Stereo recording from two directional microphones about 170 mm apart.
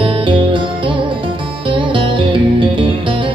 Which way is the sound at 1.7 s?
30° right (ahead or behind).